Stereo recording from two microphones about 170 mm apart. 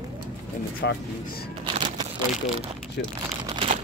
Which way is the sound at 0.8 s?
90° left.